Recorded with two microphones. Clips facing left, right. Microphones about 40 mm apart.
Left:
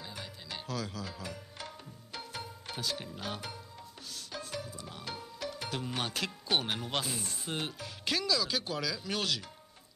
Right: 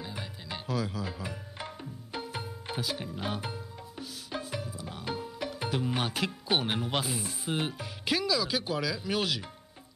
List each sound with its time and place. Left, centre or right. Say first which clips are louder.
0.0 s music: right 4 dB; centre
5.6 s speech: right 6 dB; centre